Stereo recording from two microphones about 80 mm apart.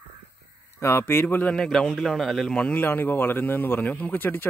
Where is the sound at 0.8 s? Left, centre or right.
Left.